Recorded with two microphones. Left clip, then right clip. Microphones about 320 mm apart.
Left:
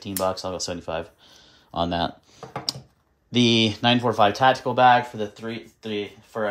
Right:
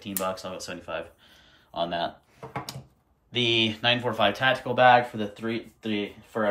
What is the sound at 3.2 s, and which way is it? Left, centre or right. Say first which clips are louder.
Speech: left 4 dB; centre.